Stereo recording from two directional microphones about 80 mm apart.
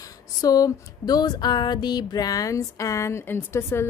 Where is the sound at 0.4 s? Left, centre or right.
Left.